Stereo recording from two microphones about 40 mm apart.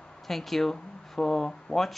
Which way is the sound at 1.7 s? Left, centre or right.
Left.